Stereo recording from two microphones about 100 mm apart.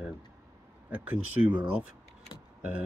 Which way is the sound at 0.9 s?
15° right (ahead or behind).